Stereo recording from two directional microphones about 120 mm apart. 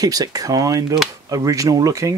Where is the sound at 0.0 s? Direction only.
30° right (ahead or behind).